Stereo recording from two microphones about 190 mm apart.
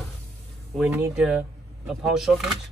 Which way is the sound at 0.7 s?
5° right (ahead or behind).